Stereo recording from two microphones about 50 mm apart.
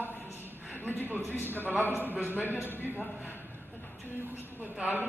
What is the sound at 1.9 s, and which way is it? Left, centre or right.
Speech, right.